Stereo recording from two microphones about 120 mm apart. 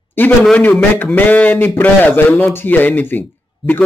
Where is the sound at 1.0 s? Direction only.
15° left (ahead or behind).